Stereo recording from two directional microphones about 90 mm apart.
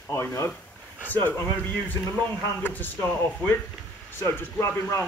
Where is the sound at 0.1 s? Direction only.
30° left (ahead or behind).